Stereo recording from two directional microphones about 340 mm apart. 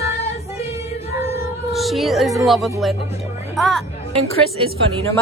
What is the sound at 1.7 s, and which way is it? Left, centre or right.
Speech, centre.